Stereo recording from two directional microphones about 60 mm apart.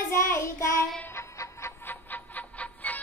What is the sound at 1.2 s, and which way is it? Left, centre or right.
Music, left.